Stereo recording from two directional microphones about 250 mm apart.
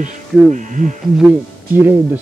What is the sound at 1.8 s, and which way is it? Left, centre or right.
Speech, centre.